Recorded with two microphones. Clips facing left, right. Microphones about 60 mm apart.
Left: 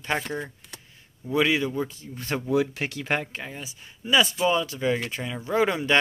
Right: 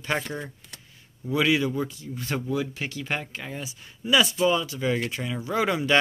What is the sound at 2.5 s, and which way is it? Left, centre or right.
Speech, left.